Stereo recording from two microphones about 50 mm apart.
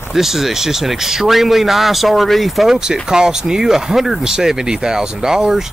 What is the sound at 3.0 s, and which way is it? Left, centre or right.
Speech, centre.